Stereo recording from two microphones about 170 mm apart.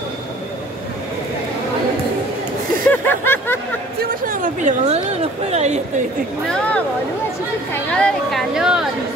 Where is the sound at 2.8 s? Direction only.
10° left (ahead or behind).